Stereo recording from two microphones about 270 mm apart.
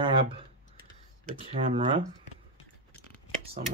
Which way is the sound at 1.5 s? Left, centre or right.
Right.